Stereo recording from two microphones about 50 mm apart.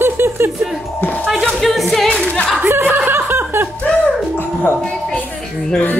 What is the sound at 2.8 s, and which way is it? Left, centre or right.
Snicker, right.